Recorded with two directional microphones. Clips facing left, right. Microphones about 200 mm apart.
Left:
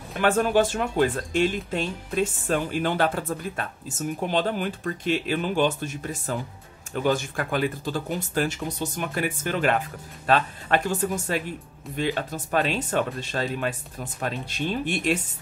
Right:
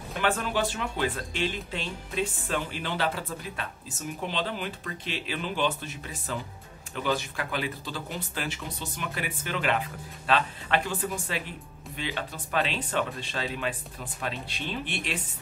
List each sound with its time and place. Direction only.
0.2 s speech: 45° left (ahead or behind)